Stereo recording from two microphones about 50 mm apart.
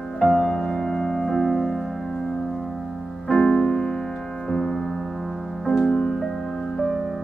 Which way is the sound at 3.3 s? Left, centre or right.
Centre.